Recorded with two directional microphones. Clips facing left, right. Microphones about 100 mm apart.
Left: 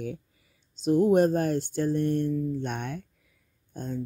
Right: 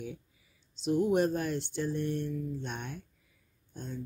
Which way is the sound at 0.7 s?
40° left (ahead or behind).